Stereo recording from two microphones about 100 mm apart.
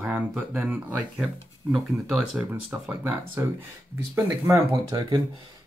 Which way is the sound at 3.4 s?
25° right (ahead or behind).